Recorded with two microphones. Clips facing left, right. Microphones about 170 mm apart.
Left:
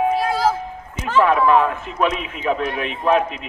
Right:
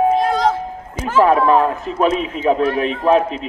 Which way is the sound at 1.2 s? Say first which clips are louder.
Right 2 dB; 35° right (ahead or behind).